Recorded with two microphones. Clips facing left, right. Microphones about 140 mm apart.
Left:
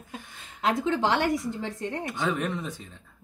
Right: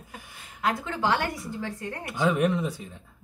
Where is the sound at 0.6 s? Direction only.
25° left (ahead or behind).